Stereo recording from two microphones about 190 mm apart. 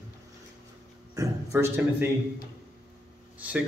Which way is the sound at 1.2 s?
15° right (ahead or behind).